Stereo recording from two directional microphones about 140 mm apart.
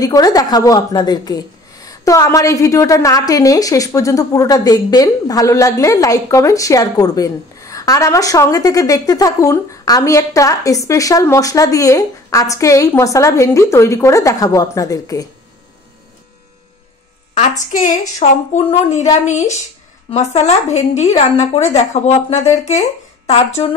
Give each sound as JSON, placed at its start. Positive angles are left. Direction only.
{"t": 0.0, "sound": "a woman's voice", "side_deg": 25}
{"t": 17.3, "sound": "a woman's voice", "side_deg": 60}